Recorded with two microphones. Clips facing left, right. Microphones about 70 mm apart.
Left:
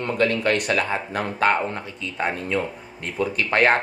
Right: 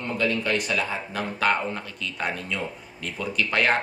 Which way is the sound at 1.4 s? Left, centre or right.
Left.